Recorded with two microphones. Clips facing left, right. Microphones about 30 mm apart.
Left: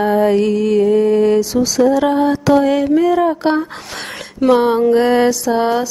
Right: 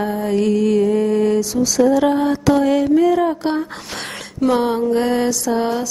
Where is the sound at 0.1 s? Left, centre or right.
Left.